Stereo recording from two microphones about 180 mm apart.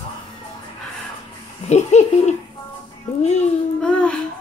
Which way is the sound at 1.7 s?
40° left (ahead or behind).